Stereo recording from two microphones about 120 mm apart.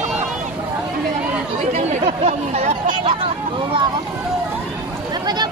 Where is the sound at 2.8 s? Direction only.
45° right (ahead or behind).